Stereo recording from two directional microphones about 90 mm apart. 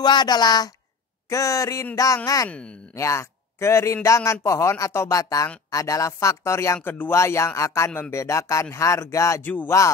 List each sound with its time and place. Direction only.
0.0 s a woman's voice: 50° left (ahead or behind)
1.3 s speech: 35° left (ahead or behind)
9.4 s speech: 20° left (ahead or behind)